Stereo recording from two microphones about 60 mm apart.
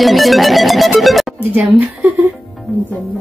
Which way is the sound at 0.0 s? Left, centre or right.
Centre.